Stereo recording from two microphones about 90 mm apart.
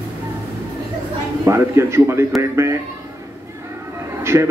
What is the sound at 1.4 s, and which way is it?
Speech, 30° right (ahead or behind).